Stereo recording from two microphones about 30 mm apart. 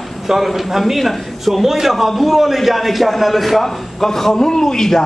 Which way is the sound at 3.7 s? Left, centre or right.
Centre.